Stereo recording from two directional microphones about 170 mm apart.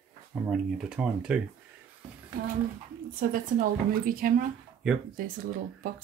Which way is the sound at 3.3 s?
55° right (ahead or behind).